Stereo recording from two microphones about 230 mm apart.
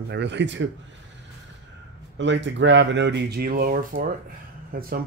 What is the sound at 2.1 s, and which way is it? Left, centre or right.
Speech, right.